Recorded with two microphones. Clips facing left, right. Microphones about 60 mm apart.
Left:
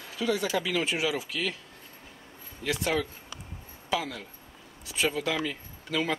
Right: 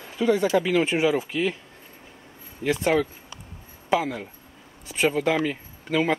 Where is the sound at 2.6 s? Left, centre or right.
Right.